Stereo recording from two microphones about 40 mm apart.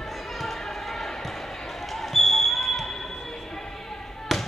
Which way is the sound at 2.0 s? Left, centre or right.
Centre.